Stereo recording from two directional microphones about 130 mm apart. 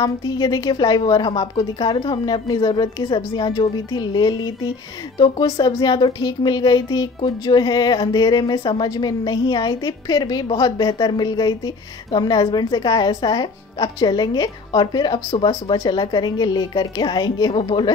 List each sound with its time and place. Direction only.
0.0 s speech: 30° left (ahead or behind)